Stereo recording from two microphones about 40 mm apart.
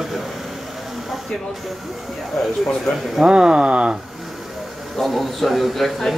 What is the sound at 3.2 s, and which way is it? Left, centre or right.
Speech, right.